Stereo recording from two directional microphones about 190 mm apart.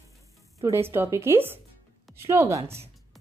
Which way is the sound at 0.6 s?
15° right (ahead or behind).